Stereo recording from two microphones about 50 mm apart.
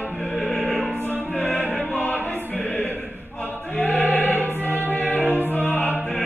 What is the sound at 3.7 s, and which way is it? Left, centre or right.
Music, left.